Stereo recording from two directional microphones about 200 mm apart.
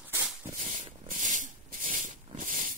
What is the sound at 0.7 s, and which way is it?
Hiss, 40° right (ahead or behind).